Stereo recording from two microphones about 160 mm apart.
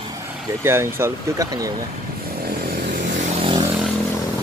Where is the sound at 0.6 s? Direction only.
15° right (ahead or behind).